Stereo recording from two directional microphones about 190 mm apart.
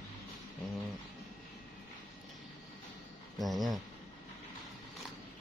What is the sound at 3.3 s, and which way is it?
Speech, centre (ahead or behind).